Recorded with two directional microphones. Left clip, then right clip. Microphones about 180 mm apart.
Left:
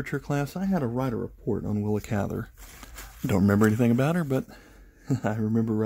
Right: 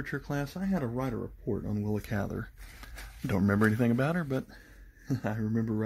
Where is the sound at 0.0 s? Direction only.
35° left (ahead or behind).